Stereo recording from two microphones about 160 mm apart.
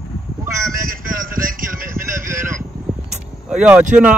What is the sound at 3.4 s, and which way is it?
Speech, 5° right (ahead or behind).